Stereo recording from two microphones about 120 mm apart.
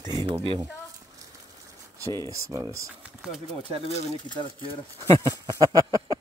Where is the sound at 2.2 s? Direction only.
25° right (ahead or behind).